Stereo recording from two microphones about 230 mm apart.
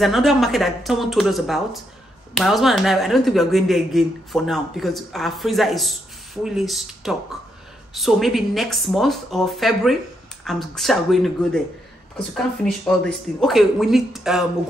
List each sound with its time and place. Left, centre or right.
0.0 s speech: centre